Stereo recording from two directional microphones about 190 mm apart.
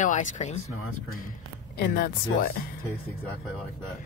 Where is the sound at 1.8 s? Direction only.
50° left (ahead or behind).